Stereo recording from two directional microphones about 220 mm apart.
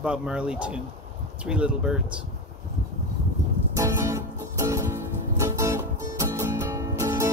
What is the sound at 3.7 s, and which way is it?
Music, 15° right (ahead or behind).